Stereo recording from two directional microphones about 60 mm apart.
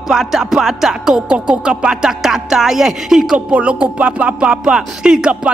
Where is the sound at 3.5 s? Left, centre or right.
Right.